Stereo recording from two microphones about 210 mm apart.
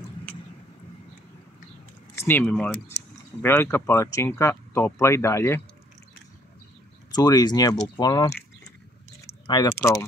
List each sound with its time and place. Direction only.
2.1 s speech: 10° left (ahead or behind)
7.1 s speech: 20° left (ahead or behind)